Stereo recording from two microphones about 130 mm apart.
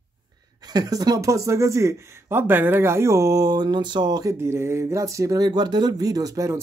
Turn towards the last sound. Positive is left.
turn(degrees=-25)  # may be behind; listen again after turning